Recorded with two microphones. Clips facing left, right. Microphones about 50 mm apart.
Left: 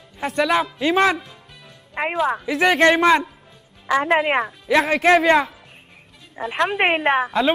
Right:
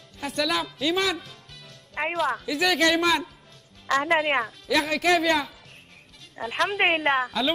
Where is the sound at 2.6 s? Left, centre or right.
Left.